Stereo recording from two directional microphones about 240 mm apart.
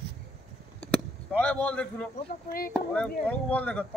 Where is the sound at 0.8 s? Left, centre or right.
Centre.